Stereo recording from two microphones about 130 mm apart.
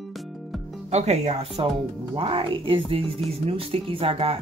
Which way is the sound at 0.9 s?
60° right (ahead or behind).